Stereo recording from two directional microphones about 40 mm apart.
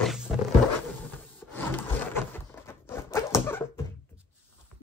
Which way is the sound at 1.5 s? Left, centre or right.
Left.